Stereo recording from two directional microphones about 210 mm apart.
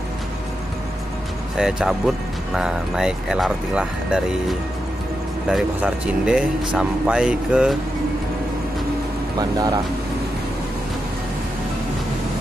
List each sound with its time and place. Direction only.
1.6 s speech: centre (ahead or behind)
9.4 s speech: 20° right (ahead or behind)